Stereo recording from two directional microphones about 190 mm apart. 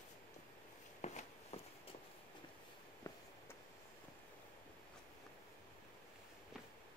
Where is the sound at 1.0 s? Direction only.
35° left (ahead or behind).